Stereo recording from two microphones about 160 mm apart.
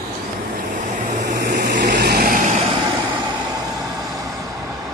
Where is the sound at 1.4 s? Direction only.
75° right (ahead or behind); by 2.6 s 50° right (ahead or behind).